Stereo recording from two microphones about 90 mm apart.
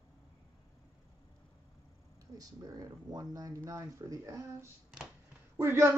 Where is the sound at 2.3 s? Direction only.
40° right (ahead or behind).